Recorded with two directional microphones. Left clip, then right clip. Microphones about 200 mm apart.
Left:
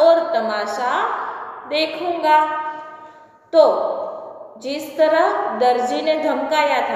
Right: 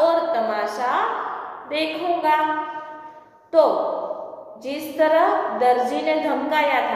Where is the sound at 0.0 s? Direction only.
20° left (ahead or behind).